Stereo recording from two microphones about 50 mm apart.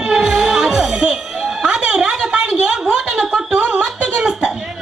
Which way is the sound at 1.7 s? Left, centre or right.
Centre.